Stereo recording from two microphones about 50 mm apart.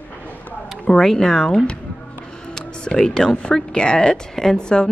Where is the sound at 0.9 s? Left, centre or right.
Centre.